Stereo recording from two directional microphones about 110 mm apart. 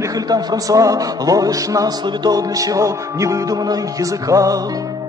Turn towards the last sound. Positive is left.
turn(degrees=-30)  # may be behind; listen again after turning